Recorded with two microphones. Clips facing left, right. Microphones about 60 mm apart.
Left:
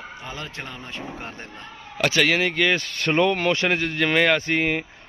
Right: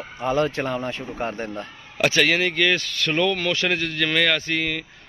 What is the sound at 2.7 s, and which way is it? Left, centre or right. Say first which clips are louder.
Speech: left 2 dB; left.